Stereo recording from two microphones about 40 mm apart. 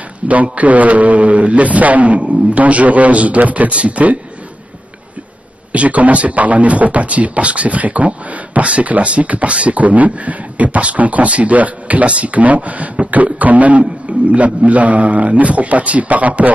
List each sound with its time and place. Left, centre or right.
0.3 s speech: right
5.7 s speech: right